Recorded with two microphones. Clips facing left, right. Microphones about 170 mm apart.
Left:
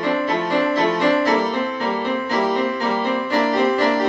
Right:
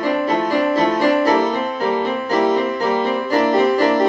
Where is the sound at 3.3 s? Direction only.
45° right (ahead or behind).